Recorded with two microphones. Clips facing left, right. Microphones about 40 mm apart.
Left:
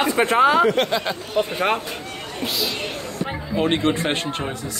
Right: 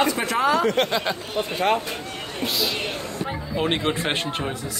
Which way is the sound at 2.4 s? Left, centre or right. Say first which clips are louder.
Even; centre.